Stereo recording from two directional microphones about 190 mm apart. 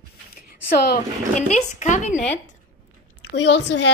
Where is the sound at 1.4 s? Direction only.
40° left (ahead or behind).